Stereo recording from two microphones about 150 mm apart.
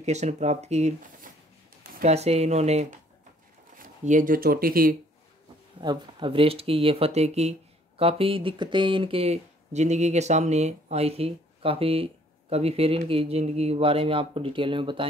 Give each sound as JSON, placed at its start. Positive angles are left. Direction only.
{"t": 0.0, "sound": "speech", "side_deg": -50}
{"t": 2.0, "sound": "speech", "side_deg": -45}
{"t": 3.7, "sound": "speech", "side_deg": -60}
{"t": 5.8, "sound": "speech", "side_deg": -30}